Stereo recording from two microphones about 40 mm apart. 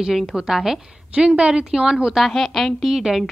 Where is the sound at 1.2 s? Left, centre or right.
Right.